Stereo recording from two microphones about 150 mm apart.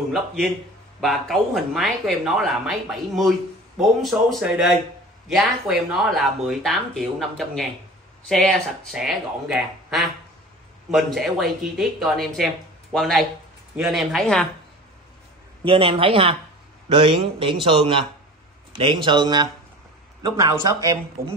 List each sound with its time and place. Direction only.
1.0 s speech: centre (ahead or behind)
15.6 s a man's voice: 35° right (ahead or behind)